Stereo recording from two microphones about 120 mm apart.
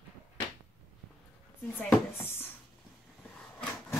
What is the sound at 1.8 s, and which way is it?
Speech, 15° left (ahead or behind).